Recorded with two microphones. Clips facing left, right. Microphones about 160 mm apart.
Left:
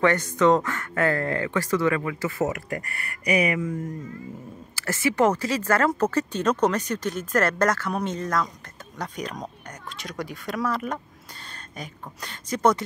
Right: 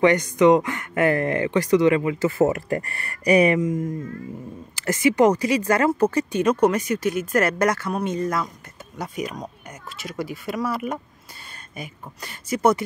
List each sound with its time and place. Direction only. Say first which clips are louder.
0.0 s speech: right 4 dB; 15° right (ahead or behind); by 3.6 s 35° right (ahead or behind)
4.7 s speech: right 4 dB; 15° right (ahead or behind)